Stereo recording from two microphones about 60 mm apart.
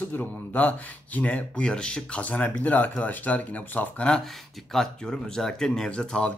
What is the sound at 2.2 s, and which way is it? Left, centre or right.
Speech, left.